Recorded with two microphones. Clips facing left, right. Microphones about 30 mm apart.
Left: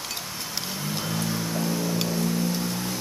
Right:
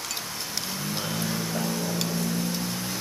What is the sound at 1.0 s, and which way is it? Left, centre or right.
Music, centre.